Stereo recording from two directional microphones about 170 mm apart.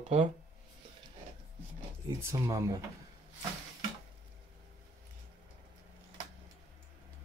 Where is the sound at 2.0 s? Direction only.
20° right (ahead or behind).